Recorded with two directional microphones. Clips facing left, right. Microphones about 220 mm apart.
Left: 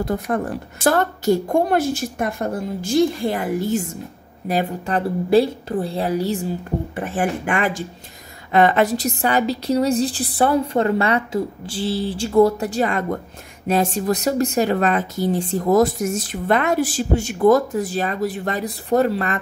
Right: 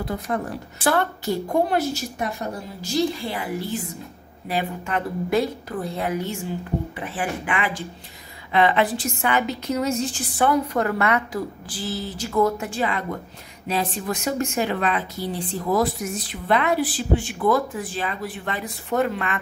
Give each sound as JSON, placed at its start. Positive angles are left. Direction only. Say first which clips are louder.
{"t": 0.0, "sound": "a woman's voice", "louder": "left 5 dB", "side_deg": 45}
{"t": 7.0, "sound": "a woman's voice", "louder": "left 6 dB", "side_deg": 45}